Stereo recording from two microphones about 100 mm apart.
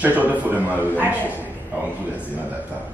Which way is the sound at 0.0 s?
15° right (ahead or behind).